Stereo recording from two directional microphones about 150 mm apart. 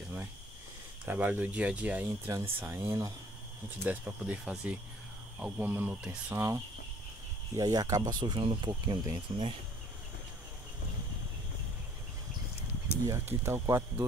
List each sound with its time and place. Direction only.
1.0 s speech: 10° right (ahead or behind); by 9.6 s 30° right (ahead or behind)
13.0 s speech: 15° right (ahead or behind)